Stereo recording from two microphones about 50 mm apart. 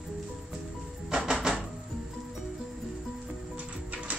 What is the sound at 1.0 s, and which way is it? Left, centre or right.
Music, centre.